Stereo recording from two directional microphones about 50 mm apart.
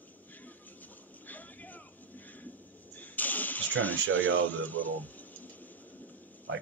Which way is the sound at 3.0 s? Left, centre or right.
Left.